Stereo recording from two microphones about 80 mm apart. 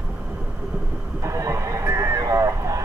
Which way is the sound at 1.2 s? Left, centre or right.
Right.